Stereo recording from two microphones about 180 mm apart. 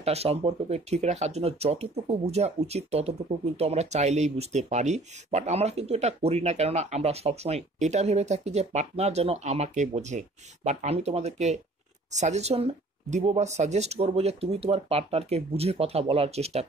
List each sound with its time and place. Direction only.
0.0 s speech: 35° right (ahead or behind)